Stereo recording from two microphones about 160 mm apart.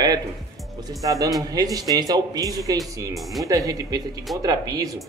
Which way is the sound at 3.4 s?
20° right (ahead or behind).